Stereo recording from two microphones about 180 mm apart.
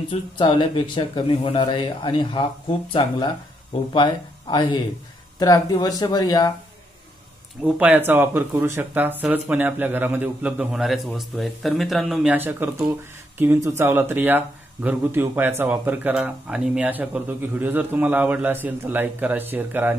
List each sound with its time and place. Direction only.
0.1 s speech: 25° left (ahead or behind)
7.6 s speech: 10° right (ahead or behind)